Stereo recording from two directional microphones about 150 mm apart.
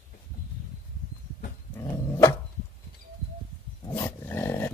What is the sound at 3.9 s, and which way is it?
Dog, 15° left (ahead or behind).